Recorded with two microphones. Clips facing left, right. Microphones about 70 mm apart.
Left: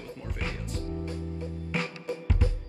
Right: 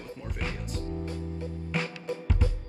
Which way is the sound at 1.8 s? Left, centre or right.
Left.